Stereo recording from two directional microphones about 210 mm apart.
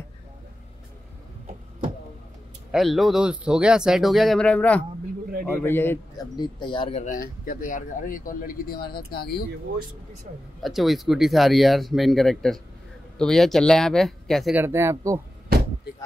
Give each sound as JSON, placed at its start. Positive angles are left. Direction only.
{"t": 2.7, "sound": "a man's voice", "side_deg": 0}
{"t": 10.6, "sound": "speech", "side_deg": 0}